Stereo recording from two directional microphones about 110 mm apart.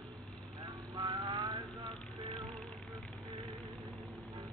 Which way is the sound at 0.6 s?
40° right (ahead or behind).